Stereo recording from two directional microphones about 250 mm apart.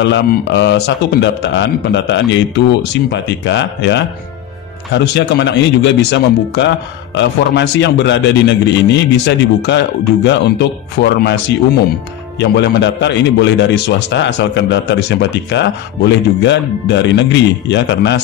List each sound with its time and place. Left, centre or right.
0.0 s a man's voice: left